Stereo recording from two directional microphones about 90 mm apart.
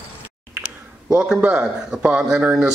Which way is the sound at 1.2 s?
10° right (ahead or behind).